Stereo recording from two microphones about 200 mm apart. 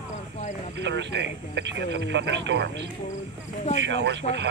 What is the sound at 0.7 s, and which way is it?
Speech, 60° right (ahead or behind).